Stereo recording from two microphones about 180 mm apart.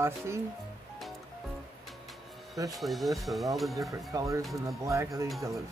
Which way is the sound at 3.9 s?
15° right (ahead or behind).